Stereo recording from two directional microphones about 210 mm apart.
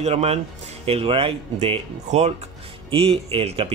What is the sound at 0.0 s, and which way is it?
Speech, 30° right (ahead or behind).